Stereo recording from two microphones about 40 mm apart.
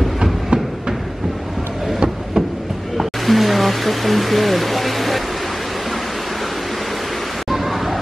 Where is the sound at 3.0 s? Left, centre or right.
Centre.